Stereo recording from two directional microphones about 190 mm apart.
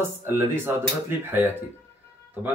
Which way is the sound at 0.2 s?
10° right (ahead or behind).